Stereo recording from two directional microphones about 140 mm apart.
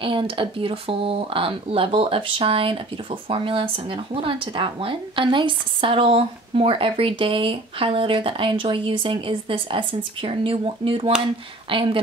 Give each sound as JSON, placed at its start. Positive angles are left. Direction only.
{"t": 0.0, "sound": "speech", "side_deg": -40}